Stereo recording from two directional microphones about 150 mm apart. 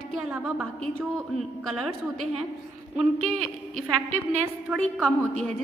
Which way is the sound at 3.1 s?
45° right (ahead or behind).